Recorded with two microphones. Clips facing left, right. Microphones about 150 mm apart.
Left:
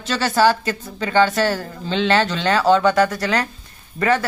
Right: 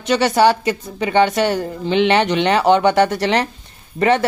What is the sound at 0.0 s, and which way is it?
Speech, 20° right (ahead or behind).